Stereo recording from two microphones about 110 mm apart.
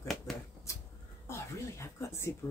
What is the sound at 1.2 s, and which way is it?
Speech, 25° left (ahead or behind).